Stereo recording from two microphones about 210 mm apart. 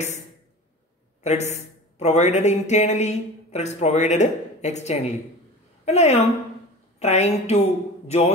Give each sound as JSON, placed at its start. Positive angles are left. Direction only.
{"t": 1.2, "sound": "a man's voice", "side_deg": 35}